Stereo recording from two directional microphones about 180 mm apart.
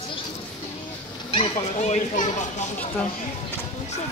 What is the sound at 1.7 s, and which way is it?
Speech, 40° left (ahead or behind).